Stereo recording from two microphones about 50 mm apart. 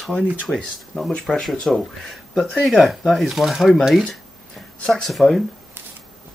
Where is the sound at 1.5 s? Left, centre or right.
Centre.